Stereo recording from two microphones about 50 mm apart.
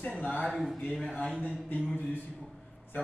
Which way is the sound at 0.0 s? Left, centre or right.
Left.